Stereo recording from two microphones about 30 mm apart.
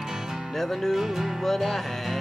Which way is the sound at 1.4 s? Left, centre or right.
Centre.